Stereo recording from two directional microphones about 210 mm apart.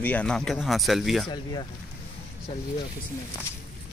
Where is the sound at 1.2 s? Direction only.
20° left (ahead or behind).